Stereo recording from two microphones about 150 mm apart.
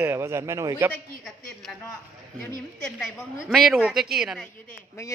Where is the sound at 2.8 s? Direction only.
5° left (ahead or behind).